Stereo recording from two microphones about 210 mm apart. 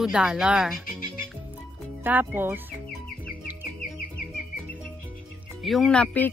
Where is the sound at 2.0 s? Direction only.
10° right (ahead or behind).